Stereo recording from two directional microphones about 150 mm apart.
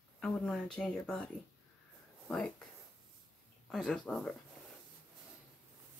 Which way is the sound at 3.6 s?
5° left (ahead or behind).